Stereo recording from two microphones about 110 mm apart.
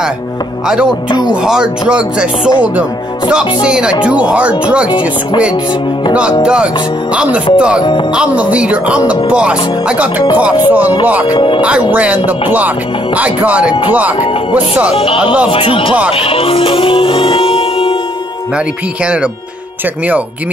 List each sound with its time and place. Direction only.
1.2 s speech: 5° right (ahead or behind)
6.4 s speech: 10° right (ahead or behind)
11.3 s speech: 50° left (ahead or behind)
11.6 s speech: 10° right (ahead or behind)
15.5 s speech: 55° left (ahead or behind)
16.1 s music: 55° left (ahead or behind)